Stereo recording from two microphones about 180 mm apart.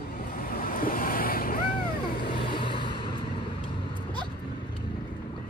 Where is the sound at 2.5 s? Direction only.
25° left (ahead or behind).